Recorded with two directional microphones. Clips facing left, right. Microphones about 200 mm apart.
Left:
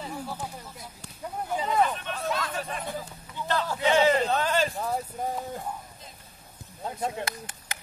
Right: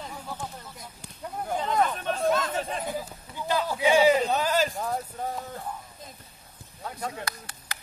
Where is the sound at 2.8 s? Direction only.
5° right (ahead or behind).